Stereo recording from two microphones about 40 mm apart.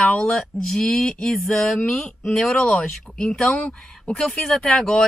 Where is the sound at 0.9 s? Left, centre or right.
Centre.